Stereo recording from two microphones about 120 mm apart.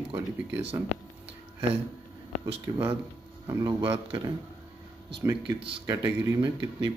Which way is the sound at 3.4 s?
40° right (ahead or behind).